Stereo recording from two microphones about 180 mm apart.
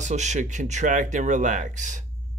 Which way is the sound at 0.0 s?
40° right (ahead or behind).